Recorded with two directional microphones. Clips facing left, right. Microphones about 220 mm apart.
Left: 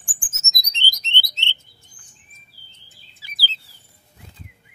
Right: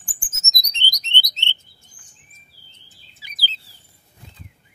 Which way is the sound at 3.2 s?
20° right (ahead or behind).